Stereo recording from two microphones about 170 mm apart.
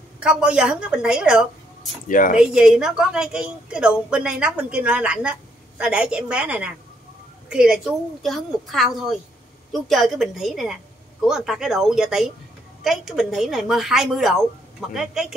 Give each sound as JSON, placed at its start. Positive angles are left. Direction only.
{"t": 0.2, "sound": "a woman's voice", "side_deg": -5}
{"t": 2.0, "sound": "speech", "side_deg": 50}
{"t": 2.3, "sound": "a woman's voice", "side_deg": -5}